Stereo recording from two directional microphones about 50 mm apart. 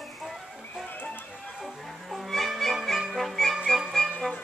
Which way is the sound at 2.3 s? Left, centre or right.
Centre.